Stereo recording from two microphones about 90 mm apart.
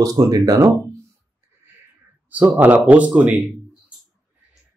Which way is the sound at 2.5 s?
15° right (ahead or behind).